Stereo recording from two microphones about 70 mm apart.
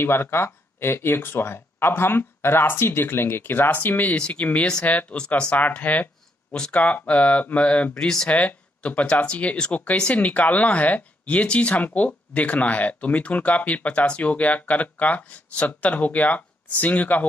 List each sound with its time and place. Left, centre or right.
0.0 s speech: left; by 8.4 s centre
8.4 s speech: left